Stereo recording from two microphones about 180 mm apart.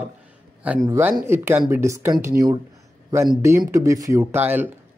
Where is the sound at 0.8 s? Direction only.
15° right (ahead or behind).